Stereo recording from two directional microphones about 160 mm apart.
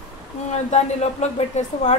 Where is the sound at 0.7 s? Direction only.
45° left (ahead or behind).